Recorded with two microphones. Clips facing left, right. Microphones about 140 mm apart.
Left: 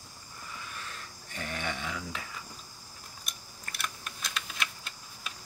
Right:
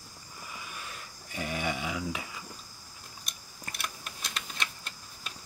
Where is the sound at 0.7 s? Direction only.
10° right (ahead or behind).